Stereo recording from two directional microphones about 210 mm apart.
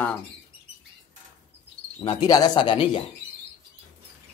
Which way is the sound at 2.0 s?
20° left (ahead or behind).